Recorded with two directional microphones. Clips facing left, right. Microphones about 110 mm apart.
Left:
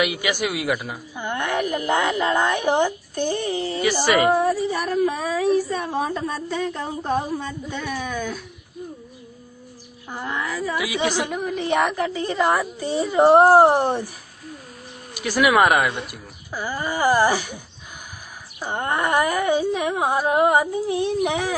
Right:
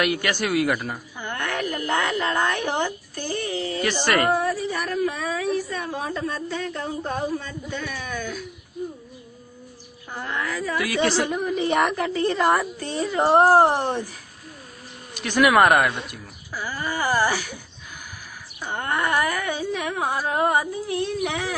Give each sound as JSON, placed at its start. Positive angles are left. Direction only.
{"t": 0.0, "sound": "speech", "side_deg": 5}
{"t": 1.1, "sound": "speech", "side_deg": 15}
{"t": 3.8, "sound": "a woman's voice", "side_deg": 5}
{"t": 4.4, "sound": "speech", "side_deg": 20}
{"t": 10.1, "sound": "speech", "side_deg": 15}
{"t": 11.2, "sound": "a woman's voice", "side_deg": 0}
{"t": 15.1, "sound": "a woman's voice", "side_deg": 5}
{"t": 16.5, "sound": "speech", "side_deg": 20}
{"t": 18.6, "sound": "speech", "side_deg": 20}